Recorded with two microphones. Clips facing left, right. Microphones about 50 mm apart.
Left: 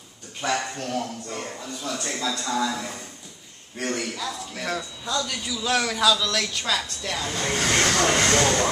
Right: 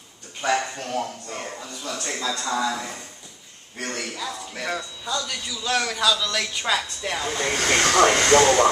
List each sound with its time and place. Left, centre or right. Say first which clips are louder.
0.4 s a man's voice: right 2 dB; centre
2.2 s speech: right 1 dB; right
3.9 s a man's voice: left 1 dB; centre